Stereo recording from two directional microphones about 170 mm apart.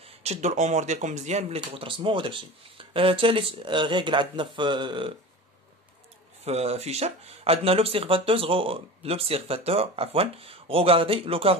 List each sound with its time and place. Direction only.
0.0 s speech: 40° right (ahead or behind)
6.4 s speech: 35° right (ahead or behind)